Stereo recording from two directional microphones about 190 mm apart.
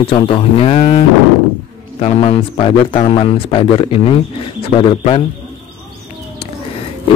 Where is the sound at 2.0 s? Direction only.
30° left (ahead or behind).